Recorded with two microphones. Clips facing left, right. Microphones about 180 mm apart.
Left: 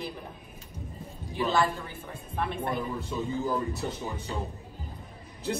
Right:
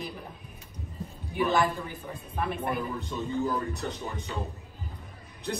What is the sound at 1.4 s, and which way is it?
Speech, 20° right (ahead or behind).